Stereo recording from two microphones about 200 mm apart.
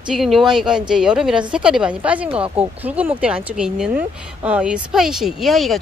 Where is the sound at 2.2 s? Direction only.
25° right (ahead or behind).